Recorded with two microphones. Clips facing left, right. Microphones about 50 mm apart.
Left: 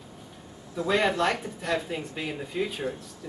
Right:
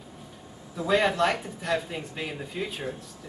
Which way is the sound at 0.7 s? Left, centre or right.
Centre.